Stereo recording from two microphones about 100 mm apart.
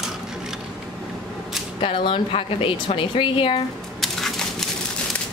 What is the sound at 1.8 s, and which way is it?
A woman's voice, 65° left (ahead or behind).